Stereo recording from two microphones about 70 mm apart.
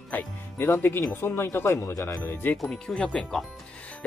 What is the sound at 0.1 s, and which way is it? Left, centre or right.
Speech, left.